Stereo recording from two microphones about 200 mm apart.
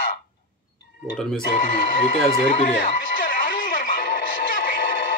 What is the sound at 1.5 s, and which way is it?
Music, 45° left (ahead or behind).